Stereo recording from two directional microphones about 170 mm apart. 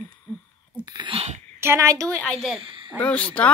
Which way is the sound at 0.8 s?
25° right (ahead or behind).